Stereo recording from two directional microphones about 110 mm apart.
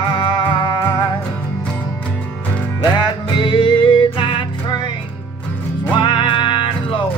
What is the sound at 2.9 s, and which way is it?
Music, 45° left (ahead or behind).